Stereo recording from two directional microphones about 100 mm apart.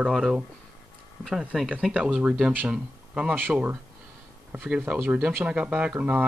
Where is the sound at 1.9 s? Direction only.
10° right (ahead or behind).